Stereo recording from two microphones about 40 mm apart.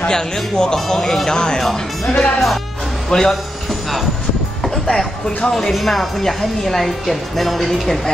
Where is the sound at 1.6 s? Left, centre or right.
Centre.